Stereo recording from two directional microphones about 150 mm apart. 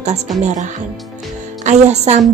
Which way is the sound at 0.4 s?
50° right (ahead or behind).